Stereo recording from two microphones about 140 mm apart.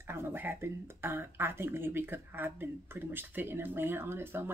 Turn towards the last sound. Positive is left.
turn(degrees=-15)  # may be behind; listen again after turning